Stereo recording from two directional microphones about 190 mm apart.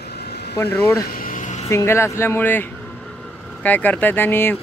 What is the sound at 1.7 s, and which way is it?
Speech, 15° left (ahead or behind).